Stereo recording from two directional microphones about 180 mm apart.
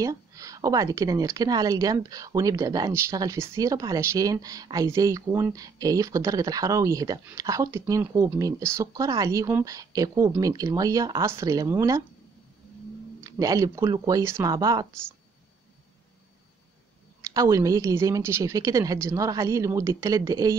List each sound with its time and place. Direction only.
0.0 s a woman's voice: 20° right (ahead or behind)
13.2 s a woman's voice: 20° right (ahead or behind)
17.2 s a woman's voice: 20° right (ahead or behind)